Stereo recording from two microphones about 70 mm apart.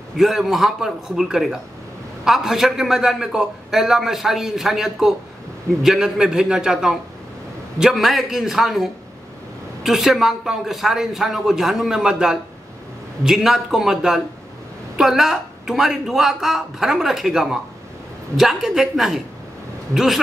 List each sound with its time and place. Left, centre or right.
0.2 s a man's voice: centre